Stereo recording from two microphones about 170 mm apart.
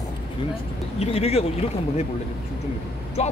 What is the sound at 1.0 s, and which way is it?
Speech, 40° left (ahead or behind).